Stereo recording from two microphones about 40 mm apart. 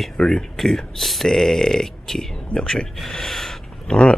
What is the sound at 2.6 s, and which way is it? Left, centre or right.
Speech, centre.